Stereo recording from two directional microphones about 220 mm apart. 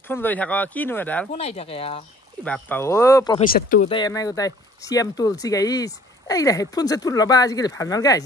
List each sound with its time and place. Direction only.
0.1 s speech: 10° left (ahead or behind)
1.3 s speech: 30° left (ahead or behind)
2.4 s speech: 5° left (ahead or behind)
3.3 s speech: 40° left (ahead or behind)
3.9 s speech: 15° left (ahead or behind)